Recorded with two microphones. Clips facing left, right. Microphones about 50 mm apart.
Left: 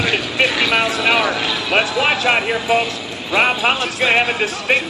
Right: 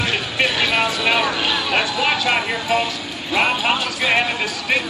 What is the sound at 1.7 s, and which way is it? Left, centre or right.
Speech, left.